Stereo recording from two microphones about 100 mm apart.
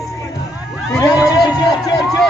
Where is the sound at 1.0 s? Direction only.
35° left (ahead or behind).